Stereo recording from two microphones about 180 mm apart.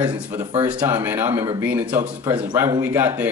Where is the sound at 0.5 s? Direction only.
25° right (ahead or behind).